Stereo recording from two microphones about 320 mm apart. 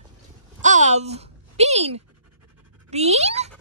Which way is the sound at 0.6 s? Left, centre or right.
Right.